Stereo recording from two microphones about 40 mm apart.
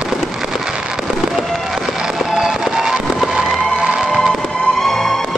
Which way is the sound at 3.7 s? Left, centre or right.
Right.